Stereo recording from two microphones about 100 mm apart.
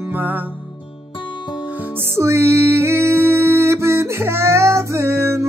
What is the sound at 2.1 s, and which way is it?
Music, 30° right (ahead or behind).